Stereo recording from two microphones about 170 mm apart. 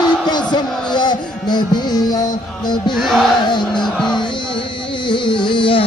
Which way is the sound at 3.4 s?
25° left (ahead or behind).